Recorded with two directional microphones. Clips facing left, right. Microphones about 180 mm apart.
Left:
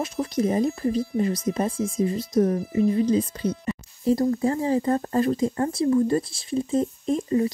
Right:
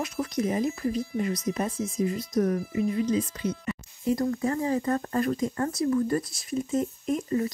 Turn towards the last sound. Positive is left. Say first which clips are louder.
# left 3 dB
turn(degrees=30)  # may be behind; listen again after turning